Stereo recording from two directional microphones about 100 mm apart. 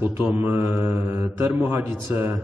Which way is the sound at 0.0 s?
20° right (ahead or behind).